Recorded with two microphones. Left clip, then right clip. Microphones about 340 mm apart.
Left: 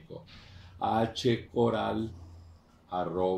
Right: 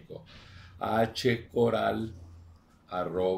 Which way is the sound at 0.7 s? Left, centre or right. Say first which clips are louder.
Right 1 dB; right.